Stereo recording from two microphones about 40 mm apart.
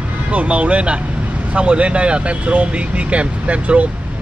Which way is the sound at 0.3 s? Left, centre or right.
Right.